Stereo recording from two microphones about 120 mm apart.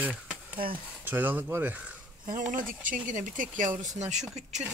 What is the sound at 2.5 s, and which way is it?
Speech, 90° right.